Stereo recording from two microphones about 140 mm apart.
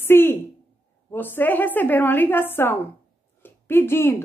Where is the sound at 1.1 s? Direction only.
15° left (ahead or behind).